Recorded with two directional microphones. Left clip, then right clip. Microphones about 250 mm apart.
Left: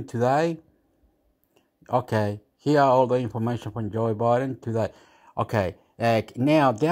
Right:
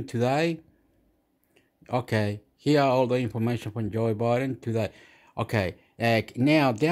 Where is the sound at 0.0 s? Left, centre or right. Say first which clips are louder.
Left 3 dB; centre.